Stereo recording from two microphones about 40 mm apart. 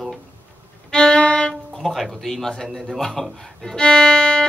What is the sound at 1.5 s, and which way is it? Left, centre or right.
Music, centre.